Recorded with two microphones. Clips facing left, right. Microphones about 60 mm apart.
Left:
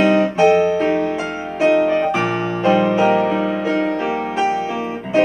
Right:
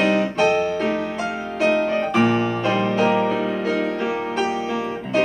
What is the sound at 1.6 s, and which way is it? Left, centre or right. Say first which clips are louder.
Music: left 5 dB; centre.